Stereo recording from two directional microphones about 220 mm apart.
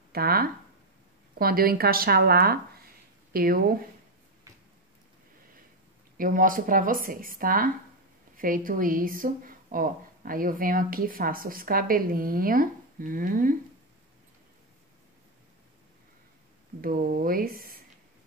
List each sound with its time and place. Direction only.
0.1 s a woman's voice: 45° right (ahead or behind)
4.5 s a sound: 15° right (ahead or behind)
6.1 s speech: 40° right (ahead or behind)
16.8 s speech: 40° right (ahead or behind)